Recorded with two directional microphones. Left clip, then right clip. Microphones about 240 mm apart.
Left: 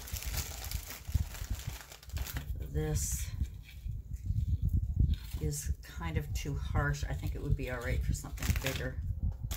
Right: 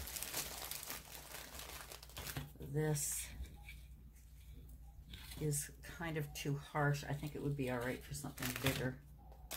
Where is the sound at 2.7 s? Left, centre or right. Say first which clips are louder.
Left 1 dB; centre.